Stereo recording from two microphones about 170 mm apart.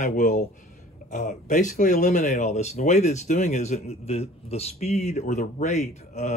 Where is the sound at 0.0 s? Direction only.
50° left (ahead or behind).